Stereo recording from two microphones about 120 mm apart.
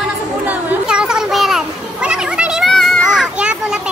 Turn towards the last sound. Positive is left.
turn(degrees=-10)  # may be behind; listen again after turning